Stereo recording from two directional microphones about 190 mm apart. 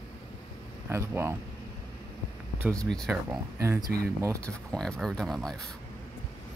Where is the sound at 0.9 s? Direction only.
15° right (ahead or behind).